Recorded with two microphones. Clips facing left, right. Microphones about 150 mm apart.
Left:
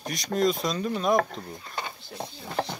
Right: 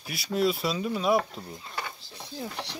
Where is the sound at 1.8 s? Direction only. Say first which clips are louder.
Left 1 dB; 20° left (ahead or behind).